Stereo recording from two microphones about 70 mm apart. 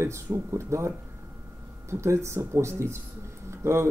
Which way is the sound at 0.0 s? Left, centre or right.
Right.